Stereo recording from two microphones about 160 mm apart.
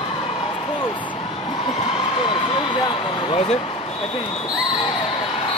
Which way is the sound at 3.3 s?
40° left (ahead or behind).